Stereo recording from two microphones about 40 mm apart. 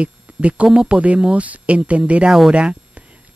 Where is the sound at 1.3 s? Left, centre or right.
Right.